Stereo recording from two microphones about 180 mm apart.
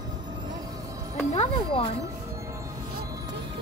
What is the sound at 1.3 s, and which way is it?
Music, 35° left (ahead or behind).